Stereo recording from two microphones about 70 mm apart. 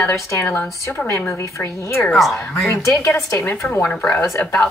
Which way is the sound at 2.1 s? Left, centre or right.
Centre.